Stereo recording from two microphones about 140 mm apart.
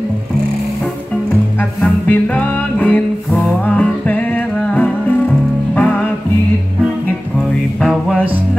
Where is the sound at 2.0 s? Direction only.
10° left (ahead or behind).